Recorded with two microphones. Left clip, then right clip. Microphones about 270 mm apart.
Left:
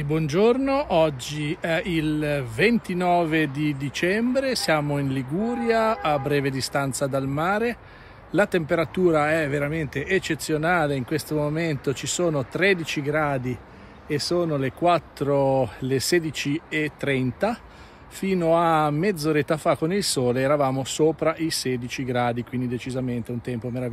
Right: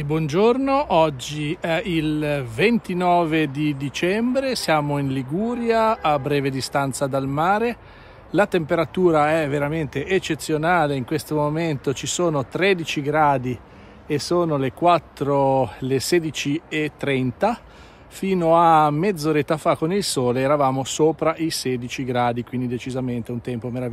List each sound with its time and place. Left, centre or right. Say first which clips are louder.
0.0 s speech: right 2 dB; centre